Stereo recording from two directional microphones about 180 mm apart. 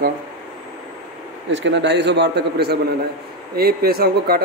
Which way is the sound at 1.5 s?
80° right.